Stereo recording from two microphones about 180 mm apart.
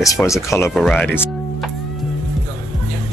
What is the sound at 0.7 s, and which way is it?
Speech, 5° left (ahead or behind).